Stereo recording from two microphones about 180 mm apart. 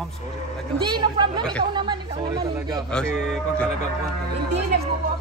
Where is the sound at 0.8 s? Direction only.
25° right (ahead or behind).